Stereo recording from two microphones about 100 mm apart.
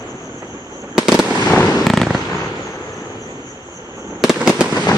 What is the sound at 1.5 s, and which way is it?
Fireworks, 15° left (ahead or behind).